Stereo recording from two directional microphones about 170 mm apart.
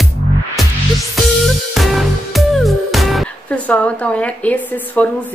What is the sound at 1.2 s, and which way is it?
Music, centre (ahead or behind).